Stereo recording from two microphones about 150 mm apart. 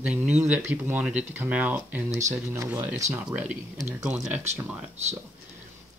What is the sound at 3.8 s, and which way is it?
Speech, 20° right (ahead or behind).